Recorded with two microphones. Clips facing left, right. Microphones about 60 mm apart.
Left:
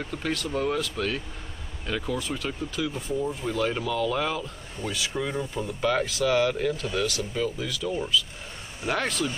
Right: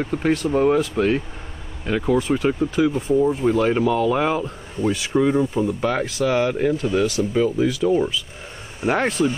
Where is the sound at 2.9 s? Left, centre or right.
Centre.